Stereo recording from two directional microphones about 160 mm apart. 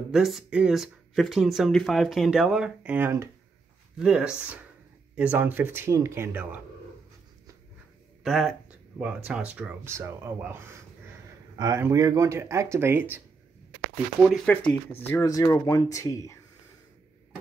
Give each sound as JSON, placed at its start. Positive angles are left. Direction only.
{"t": 0.1, "sound": "speech", "side_deg": 0}
{"t": 8.2, "sound": "speech", "side_deg": 0}
{"t": 14.3, "sound": "speech", "side_deg": 5}
{"t": 15.0, "sound": "speech", "side_deg": 15}